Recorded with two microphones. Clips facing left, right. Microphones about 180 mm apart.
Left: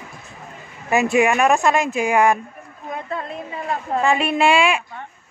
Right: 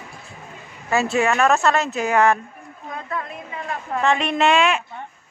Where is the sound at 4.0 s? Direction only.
10° left (ahead or behind).